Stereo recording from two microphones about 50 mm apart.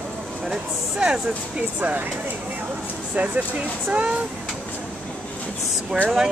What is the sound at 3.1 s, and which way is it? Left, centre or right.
Speech, right.